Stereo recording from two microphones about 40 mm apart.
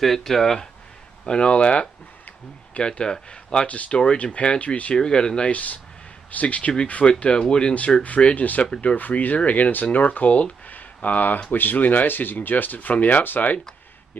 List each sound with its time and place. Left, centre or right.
0.0 s speech: centre
1.2 s speech: left
3.6 s speech: left
4.9 s speech: centre
5.5 s speech: left
8.4 s speech: left
8.6 s speech: left
8.9 s speech: left
11.5 s speech: left